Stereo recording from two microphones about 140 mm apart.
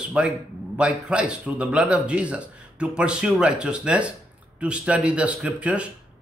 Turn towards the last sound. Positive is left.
turn(degrees=-10)  # may be behind; listen again after turning